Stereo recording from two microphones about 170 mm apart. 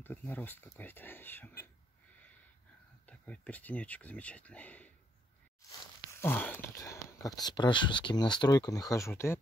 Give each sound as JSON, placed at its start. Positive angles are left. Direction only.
{"t": 0.0, "sound": "speech", "side_deg": 10}
{"t": 3.1, "sound": "speech", "side_deg": 10}
{"t": 5.6, "sound": "a sound", "side_deg": 20}
{"t": 6.2, "sound": "speech", "side_deg": 10}